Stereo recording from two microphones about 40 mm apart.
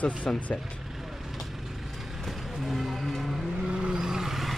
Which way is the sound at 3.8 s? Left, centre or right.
Centre.